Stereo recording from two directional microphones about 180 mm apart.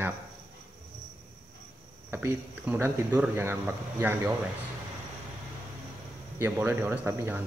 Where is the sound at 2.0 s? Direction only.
10° right (ahead or behind).